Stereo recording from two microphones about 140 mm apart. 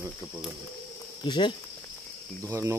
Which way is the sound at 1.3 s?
35° left (ahead or behind).